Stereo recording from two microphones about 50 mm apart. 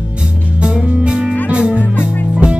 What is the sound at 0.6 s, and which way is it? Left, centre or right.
Music, right.